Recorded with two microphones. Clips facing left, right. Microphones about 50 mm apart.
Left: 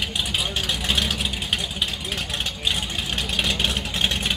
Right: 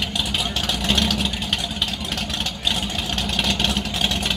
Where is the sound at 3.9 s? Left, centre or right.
Left.